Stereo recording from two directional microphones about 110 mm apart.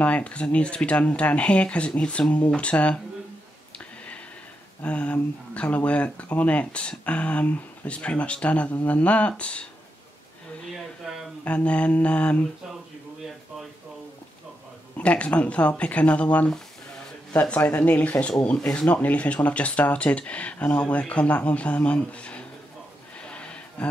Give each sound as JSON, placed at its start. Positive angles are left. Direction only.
{"t": 0.0, "sound": "speech", "side_deg": 10}
{"t": 4.8, "sound": "speech", "side_deg": 10}
{"t": 11.4, "sound": "speech", "side_deg": 10}
{"t": 15.0, "sound": "speech", "side_deg": 10}
{"t": 23.1, "sound": "a sound", "side_deg": 10}